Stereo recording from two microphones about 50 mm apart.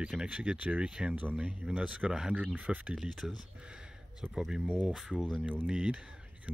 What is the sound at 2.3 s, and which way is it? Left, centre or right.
Speech, right.